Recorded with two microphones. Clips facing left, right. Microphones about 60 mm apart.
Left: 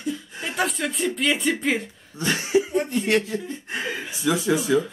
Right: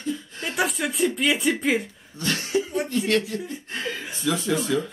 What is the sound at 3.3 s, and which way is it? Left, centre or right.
Speech, centre.